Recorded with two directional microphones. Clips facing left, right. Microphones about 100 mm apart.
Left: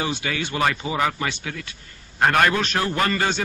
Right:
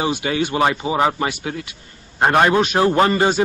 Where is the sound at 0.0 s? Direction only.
25° right (ahead or behind).